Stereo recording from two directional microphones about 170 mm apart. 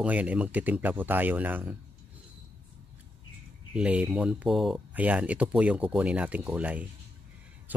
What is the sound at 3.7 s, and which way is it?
Speech, 5° right (ahead or behind).